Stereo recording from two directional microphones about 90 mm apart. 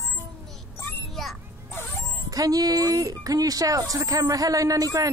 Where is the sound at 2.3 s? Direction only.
45° right (ahead or behind).